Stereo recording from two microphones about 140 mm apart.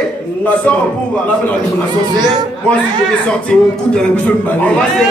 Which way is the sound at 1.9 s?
30° right (ahead or behind).